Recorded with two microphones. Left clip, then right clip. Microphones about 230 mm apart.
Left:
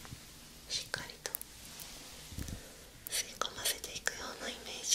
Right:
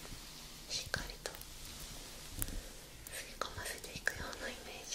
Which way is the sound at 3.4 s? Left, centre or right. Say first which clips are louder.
Left 2 dB; centre.